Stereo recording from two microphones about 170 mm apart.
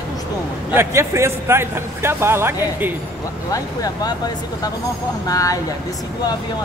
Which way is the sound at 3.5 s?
20° left (ahead or behind).